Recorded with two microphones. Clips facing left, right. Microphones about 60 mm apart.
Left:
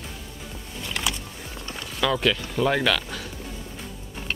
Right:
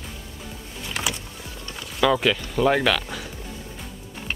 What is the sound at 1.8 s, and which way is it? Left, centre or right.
Speech, centre.